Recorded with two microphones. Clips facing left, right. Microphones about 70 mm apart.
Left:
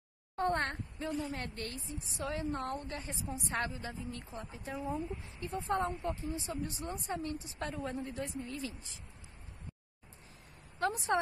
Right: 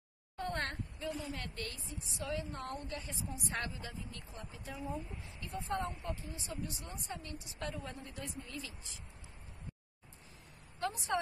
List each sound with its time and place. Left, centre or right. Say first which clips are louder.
0.4 s a woman's voice: left 6 dB; left
10.8 s speech: left 5 dB; left